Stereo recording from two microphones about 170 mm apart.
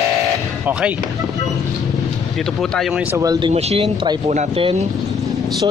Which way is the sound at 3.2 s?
25° right (ahead or behind).